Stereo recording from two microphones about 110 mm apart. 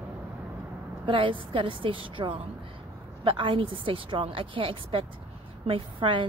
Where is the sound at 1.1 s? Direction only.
50° right (ahead or behind).